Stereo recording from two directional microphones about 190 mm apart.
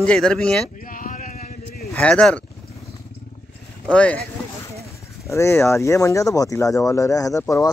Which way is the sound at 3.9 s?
5° left (ahead or behind).